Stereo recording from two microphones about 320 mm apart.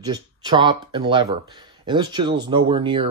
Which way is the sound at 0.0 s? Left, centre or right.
Centre.